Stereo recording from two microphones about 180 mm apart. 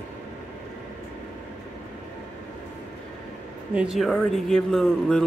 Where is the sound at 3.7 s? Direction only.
5° right (ahead or behind).